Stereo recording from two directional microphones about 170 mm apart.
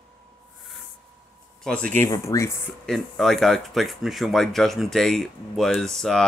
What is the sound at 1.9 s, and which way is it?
Speech, 15° left (ahead or behind).